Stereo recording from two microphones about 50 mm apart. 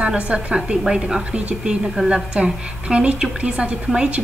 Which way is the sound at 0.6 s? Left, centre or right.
Centre.